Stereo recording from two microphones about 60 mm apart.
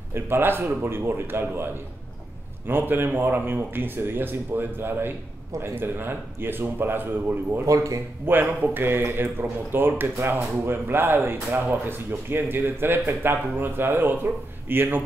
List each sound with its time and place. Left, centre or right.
0.1 s speech: right
7.6 s speech: right
8.3 s speech: right